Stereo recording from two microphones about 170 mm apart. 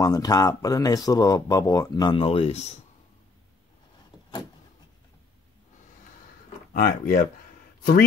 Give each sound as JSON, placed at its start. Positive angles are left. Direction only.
{"t": 0.0, "sound": "speech", "side_deg": 20}
{"t": 6.7, "sound": "speech", "side_deg": 60}